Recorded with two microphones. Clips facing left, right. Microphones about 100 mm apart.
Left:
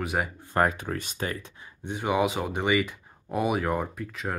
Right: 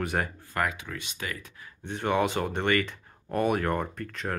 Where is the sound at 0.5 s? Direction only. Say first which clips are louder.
Left 6 dB; 40° left (ahead or behind).